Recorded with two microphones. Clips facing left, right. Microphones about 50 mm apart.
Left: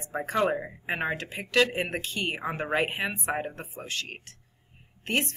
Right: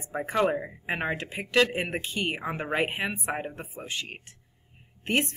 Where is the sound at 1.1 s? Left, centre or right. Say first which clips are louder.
Right 1 dB; right.